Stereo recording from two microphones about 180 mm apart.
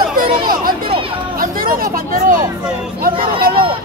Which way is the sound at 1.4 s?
55° right (ahead or behind).